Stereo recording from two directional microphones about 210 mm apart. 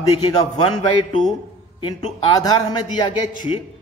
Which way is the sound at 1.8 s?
20° left (ahead or behind).